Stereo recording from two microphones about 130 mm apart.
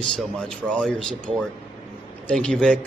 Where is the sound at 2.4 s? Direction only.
5° left (ahead or behind).